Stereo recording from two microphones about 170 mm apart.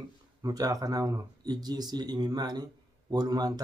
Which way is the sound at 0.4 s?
20° right (ahead or behind).